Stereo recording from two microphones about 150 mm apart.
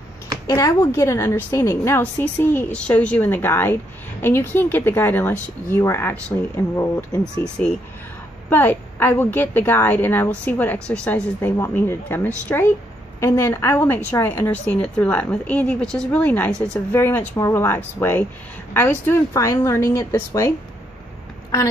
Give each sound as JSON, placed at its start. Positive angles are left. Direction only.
{"t": 0.5, "sound": "a woman's voice", "side_deg": 25}
{"t": 8.5, "sound": "a woman's voice", "side_deg": 15}